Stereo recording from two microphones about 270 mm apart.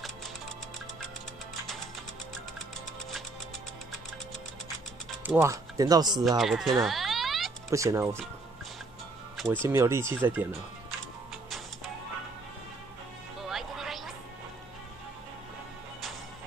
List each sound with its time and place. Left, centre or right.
5.2 s speech: centre
6.1 s speech: centre
7.7 s speech: centre
9.7 s speech: centre
13.4 s music: centre